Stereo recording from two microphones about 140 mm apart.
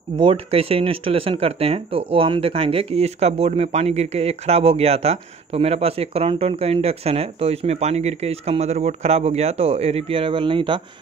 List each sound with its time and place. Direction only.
0.1 s speech: 35° right (ahead or behind)